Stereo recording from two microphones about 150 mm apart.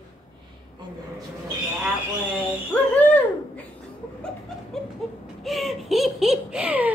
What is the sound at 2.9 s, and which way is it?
Speech, 10° left (ahead or behind).